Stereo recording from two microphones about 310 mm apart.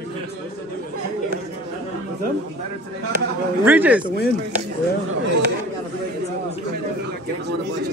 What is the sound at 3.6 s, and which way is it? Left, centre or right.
Speech, centre.